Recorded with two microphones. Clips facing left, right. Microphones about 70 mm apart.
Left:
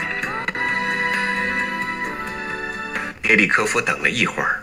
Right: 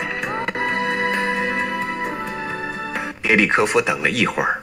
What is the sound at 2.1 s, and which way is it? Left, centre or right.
Music, centre.